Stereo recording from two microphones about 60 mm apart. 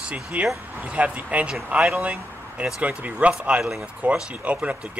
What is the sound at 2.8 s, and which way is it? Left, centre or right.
A man's voice, right.